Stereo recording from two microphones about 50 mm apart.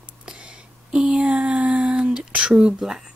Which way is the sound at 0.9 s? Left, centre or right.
Right.